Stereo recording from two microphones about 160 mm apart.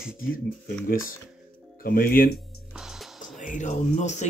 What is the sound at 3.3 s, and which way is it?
Speech, 50° left (ahead or behind).